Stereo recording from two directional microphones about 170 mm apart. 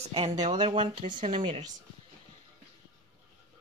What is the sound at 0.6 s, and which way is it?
Speech, 30° right (ahead or behind).